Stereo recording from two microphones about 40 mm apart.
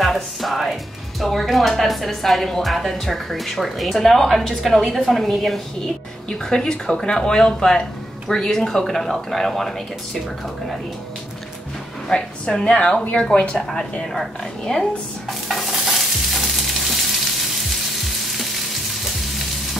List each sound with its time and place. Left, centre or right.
0.0 s music: centre
1.2 s speech: centre
6.2 s speech: centre
12.1 s speech: centre
15.7 s stir: centre